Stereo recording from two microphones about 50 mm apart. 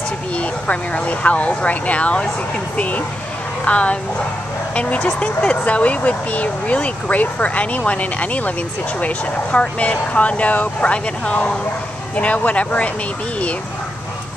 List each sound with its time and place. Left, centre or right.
0.4 s speech: left
3.6 s speech: left